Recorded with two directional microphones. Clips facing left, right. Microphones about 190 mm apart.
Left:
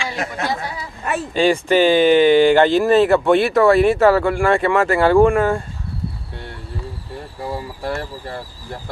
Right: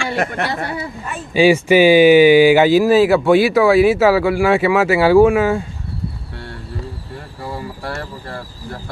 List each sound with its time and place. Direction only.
0.0 s speech: 60° right (ahead or behind)
1.3 s speech: 10° right (ahead or behind)